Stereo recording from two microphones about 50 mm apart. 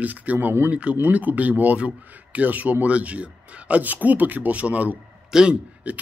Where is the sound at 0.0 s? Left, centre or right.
Right.